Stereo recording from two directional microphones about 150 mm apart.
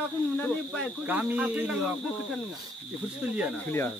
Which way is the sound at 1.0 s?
10° right (ahead or behind).